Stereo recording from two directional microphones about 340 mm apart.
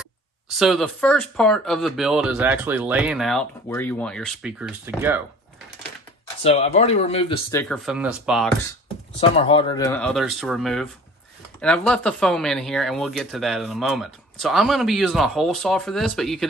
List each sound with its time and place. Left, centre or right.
0.6 s speech: centre
6.4 s speech: centre
7.6 s speech: centre
9.4 s speech: centre